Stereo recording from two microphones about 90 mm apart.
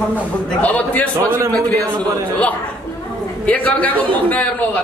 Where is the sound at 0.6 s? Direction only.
15° left (ahead or behind).